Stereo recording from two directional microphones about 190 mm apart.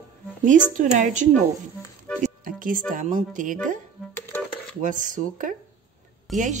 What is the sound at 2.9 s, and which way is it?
Speech, 45° right (ahead or behind).